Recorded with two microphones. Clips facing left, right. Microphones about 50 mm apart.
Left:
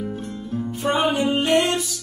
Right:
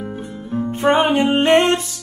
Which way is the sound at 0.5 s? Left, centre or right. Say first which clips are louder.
Right 7 dB; right.